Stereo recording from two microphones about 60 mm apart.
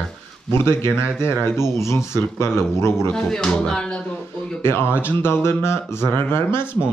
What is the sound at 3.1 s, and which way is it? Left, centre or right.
Speech, centre.